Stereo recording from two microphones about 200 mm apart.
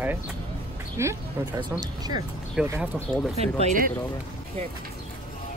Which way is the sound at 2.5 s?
10° right (ahead or behind).